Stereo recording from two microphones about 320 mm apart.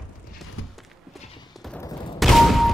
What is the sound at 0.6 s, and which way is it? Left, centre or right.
Clip-clop, left.